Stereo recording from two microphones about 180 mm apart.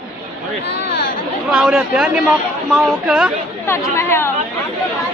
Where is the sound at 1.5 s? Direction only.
Centre (ahead or behind).